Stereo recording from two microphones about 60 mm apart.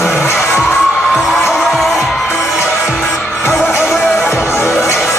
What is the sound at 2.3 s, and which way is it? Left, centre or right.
Music, left.